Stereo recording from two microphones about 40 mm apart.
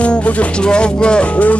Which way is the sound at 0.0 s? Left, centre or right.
Left.